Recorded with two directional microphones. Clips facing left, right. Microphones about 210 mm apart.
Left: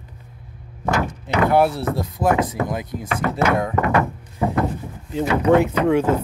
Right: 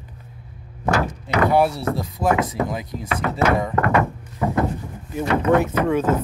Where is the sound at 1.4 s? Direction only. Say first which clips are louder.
Left 1 dB; centre (ahead or behind).